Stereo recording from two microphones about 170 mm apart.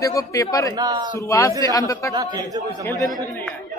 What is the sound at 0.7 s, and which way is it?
Speech, 20° right (ahead or behind).